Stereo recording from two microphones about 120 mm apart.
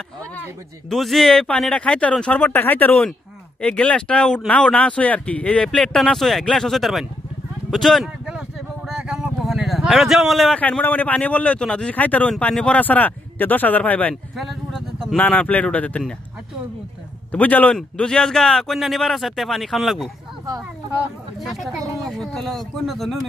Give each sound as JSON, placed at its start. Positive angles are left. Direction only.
{"t": 0.8, "sound": "a man's voice", "side_deg": 0}
{"t": 8.3, "sound": "vehicle", "side_deg": -5}
{"t": 10.6, "sound": "a man's voice", "side_deg": 15}
{"t": 14.3, "sound": "a sound", "side_deg": 0}
{"t": 15.1, "sound": "a man's voice", "side_deg": 10}
{"t": 17.3, "sound": "a man's voice", "side_deg": 15}
{"t": 21.4, "sound": "a man's voice", "side_deg": 0}